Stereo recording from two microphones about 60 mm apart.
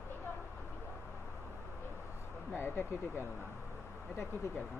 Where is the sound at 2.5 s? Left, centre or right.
Left.